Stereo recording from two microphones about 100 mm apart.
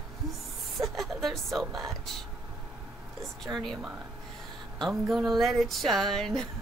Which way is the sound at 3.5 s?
5° left (ahead or behind).